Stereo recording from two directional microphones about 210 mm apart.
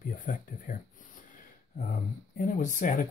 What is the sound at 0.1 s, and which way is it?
Speech, 40° left (ahead or behind).